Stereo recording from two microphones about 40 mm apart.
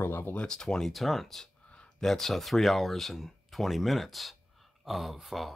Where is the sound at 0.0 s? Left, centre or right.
Left.